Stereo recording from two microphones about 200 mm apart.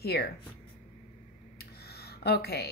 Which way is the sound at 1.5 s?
50° left (ahead or behind).